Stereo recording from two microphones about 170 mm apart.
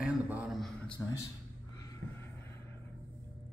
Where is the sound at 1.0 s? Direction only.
15° left (ahead or behind).